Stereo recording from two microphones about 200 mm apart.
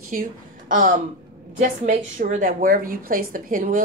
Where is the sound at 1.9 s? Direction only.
40° right (ahead or behind).